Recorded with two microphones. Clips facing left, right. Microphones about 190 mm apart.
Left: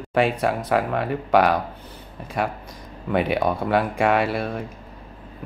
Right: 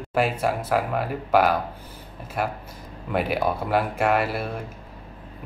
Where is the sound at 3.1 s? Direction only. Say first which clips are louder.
Left 2 dB; centre (ahead or behind).